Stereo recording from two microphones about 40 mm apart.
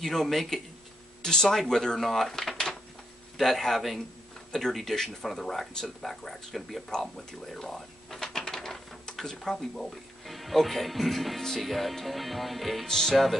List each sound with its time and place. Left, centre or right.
0.0 s speech: centre
1.6 s music: centre
2.5 s a sound: centre
3.3 s music: centre
4.5 s speech: centre
11.6 s music: centre
12.8 s speech: centre